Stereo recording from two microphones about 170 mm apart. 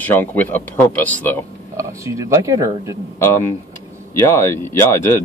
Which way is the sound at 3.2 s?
15° left (ahead or behind).